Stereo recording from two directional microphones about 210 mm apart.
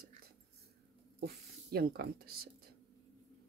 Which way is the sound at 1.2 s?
45° right (ahead or behind).